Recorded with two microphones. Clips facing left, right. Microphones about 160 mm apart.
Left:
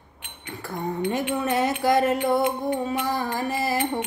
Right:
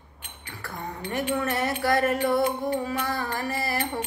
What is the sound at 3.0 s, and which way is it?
Music, 20° left (ahead or behind).